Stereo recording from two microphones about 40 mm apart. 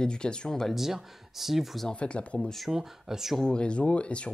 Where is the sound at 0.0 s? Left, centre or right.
Left.